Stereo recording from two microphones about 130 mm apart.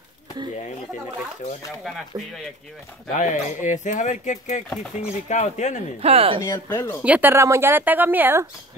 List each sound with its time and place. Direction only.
3.2 s speech: 75° left (ahead or behind)
5.9 s speech: 50° right (ahead or behind)
6.4 s speech: 25° left (ahead or behind)
7.0 s speech: 10° right (ahead or behind)